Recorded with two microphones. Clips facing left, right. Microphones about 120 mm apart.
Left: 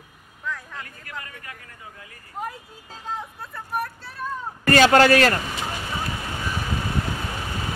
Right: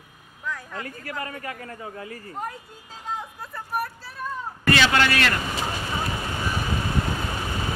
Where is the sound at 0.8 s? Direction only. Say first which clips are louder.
Right 6 dB; 35° right (ahead or behind).